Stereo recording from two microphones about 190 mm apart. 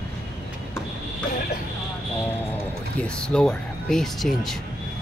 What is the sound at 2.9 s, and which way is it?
Speech, 5° left (ahead or behind).